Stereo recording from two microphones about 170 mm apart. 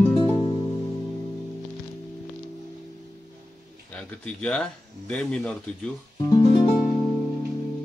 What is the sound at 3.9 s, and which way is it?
Speech, 5° left (ahead or behind).